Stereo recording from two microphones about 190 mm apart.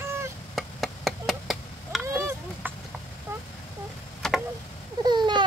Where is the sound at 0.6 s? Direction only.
Centre (ahead or behind).